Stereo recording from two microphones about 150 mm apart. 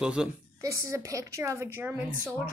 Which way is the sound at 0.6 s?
20° right (ahead or behind).